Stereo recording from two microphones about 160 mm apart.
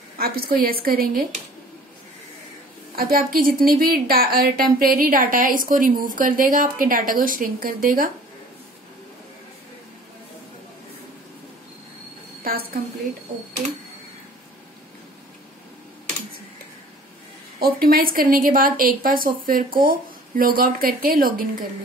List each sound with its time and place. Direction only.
0.2 s a woman's voice: 70° right (ahead or behind)
3.0 s a woman's voice: 65° right (ahead or behind)
12.4 s a sound: 70° right (ahead or behind)
17.6 s a woman's voice: 70° right (ahead or behind)